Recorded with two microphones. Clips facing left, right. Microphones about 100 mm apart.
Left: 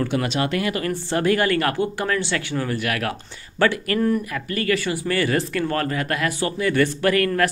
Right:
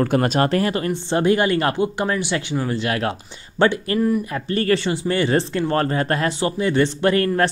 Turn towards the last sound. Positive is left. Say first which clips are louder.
# right 2 dB
turn(degrees=-30)  # may be behind; listen again after turning